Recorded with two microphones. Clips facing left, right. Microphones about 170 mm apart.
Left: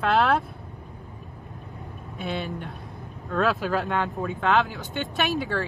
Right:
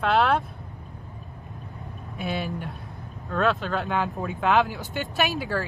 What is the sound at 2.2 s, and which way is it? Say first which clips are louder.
Speech: right 1 dB; 5° right (ahead or behind).